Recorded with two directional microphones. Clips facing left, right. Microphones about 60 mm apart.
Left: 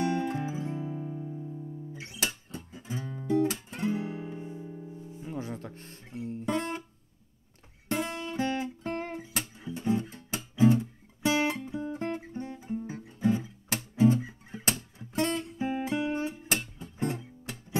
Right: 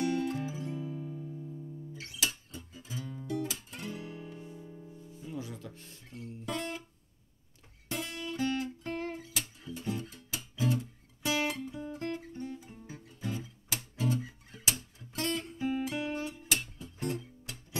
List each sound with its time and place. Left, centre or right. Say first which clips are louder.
0.0 s music: left 2 dB; left
3.7 s music: left 10 dB; left
5.3 s music: left 4 dB; left
6.0 s guitar: left 7 dB; left
8.0 s guitar: left 6 dB; centre
8.3 s music: right 2 dB; left
13.0 s guitar: left 10 dB; left
13.9 s music: left 10 dB; left
14.5 s music: left 4 dB; left